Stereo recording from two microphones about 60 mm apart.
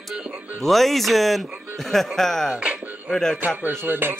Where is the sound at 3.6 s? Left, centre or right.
Right.